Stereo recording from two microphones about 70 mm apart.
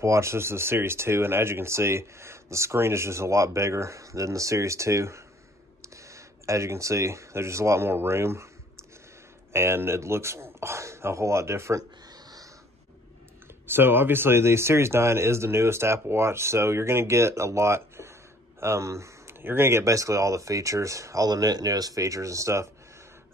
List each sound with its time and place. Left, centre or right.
0.0 s speech: right
9.5 s speech: right
13.7 s speech: right
19.4 s speech: right
21.3 s speech: right